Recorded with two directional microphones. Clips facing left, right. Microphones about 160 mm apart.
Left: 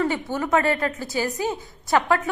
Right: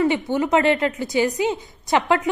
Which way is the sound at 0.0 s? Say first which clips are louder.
Right 4 dB; 15° right (ahead or behind).